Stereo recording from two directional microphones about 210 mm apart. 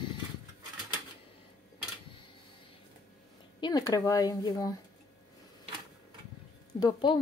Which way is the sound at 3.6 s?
20° left (ahead or behind).